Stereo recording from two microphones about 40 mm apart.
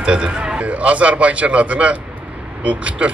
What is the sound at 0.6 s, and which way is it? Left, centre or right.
A man's voice, right.